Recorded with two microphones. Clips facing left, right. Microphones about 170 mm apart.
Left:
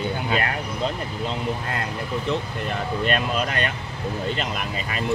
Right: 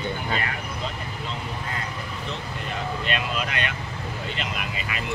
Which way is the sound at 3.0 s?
45° left (ahead or behind).